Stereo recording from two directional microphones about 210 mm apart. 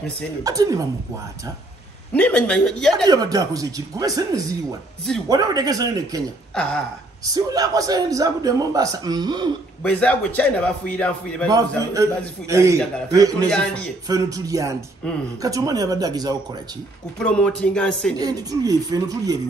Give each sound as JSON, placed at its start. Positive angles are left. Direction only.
{"t": 0.4, "sound": "a man's voice", "side_deg": -15}
{"t": 2.1, "sound": "a man's voice", "side_deg": 5}
{"t": 3.1, "sound": "a man's voice", "side_deg": -15}
{"t": 6.5, "sound": "speech", "side_deg": 5}
{"t": 7.2, "sound": "a man's voice", "side_deg": -15}
{"t": 9.8, "sound": "a man's voice", "side_deg": 5}
{"t": 11.4, "sound": "a man's voice", "side_deg": -15}
{"t": 13.5, "sound": "a man's voice", "side_deg": 5}
{"t": 14.0, "sound": "a man's voice", "side_deg": -15}
{"t": 17.2, "sound": "a man's voice", "side_deg": 5}
{"t": 18.1, "sound": "a man's voice", "side_deg": -15}